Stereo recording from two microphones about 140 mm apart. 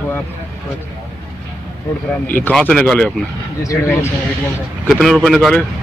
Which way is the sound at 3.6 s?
25° left (ahead or behind).